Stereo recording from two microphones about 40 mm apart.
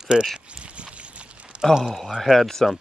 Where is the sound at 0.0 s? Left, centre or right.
Centre.